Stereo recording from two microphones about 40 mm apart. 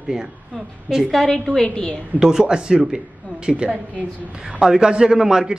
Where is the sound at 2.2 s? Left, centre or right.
Centre.